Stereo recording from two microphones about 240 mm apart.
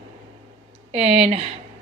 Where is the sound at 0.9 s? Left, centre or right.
Right.